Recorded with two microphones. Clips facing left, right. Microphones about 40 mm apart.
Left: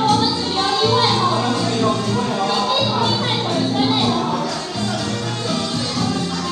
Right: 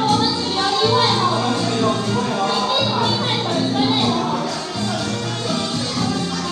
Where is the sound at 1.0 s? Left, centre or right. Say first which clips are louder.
Even; left.